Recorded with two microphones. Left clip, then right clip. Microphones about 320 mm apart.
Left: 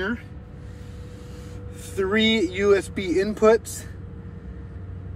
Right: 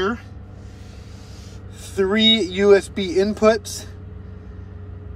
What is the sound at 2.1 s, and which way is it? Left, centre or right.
Speech, right.